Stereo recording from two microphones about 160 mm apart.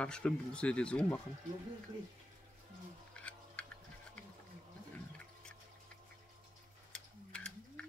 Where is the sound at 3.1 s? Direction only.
5° left (ahead or behind).